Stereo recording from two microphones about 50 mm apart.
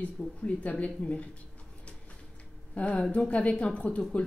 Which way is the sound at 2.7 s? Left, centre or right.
Left.